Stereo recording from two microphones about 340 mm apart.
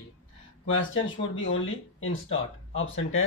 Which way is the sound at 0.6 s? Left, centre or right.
Left.